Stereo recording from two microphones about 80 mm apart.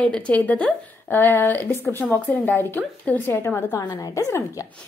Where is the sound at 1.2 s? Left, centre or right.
Left.